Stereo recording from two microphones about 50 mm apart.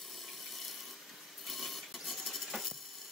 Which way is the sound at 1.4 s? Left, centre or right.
Centre.